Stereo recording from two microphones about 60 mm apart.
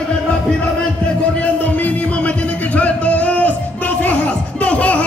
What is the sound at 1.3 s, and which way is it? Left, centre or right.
Music, left.